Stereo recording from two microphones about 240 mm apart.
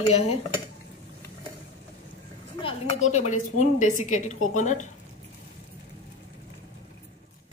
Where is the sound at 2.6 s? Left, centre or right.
Left.